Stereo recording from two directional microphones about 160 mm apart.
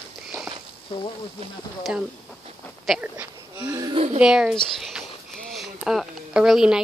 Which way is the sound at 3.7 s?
25° right (ahead or behind).